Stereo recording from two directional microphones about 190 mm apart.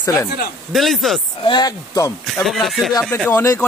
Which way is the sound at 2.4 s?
Centre (ahead or behind).